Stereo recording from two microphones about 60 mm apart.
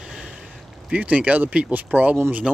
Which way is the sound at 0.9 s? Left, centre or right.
Right.